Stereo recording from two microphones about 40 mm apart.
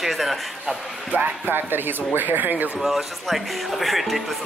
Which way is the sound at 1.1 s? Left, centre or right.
Right.